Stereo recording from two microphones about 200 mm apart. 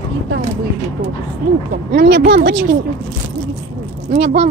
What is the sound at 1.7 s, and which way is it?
Speech, 55° right (ahead or behind).